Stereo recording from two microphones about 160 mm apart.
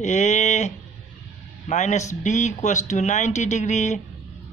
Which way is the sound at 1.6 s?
50° left (ahead or behind).